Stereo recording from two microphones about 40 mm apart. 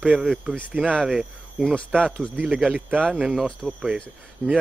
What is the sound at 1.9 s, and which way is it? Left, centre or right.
Speech, right.